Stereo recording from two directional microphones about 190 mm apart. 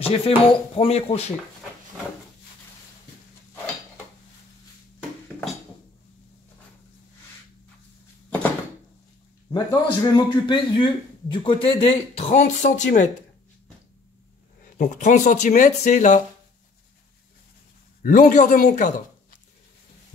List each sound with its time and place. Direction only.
0.0 s speech: 30° left (ahead or behind)
9.5 s a man's voice: 20° left (ahead or behind); by 13.1 s 40° left (ahead or behind)
14.8 s speech: 40° left (ahead or behind)
18.0 s a man's voice: 40° left (ahead or behind)